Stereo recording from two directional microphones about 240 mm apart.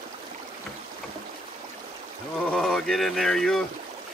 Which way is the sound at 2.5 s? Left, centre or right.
Centre.